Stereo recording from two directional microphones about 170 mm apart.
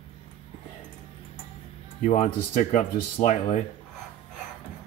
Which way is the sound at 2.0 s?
40° left (ahead or behind).